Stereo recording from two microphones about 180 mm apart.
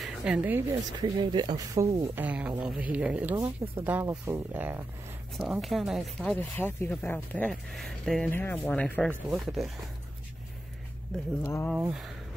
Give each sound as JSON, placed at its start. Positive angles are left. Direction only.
{"t": 0.0, "sound": "speech", "side_deg": -5}
{"t": 1.0, "sound": "speech", "side_deg": -25}
{"t": 5.4, "sound": "speech", "side_deg": 0}
{"t": 6.3, "sound": "speech", "side_deg": 10}
{"t": 9.1, "sound": "speech", "side_deg": -5}
{"t": 11.4, "sound": "speech", "side_deg": 15}
{"t": 11.7, "sound": "speech", "side_deg": -5}